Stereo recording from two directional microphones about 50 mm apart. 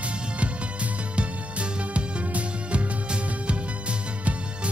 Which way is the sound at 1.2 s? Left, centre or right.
Right.